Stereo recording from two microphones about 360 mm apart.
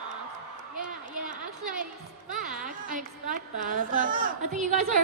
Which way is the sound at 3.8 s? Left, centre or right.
Right.